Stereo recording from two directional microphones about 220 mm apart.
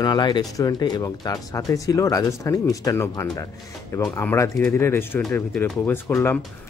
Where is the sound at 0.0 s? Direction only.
20° left (ahead or behind).